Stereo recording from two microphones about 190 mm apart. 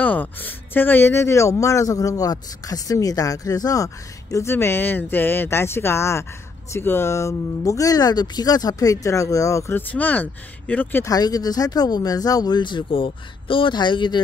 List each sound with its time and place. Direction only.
0.0 s speech: 10° left (ahead or behind); by 14.2 s 25° left (ahead or behind)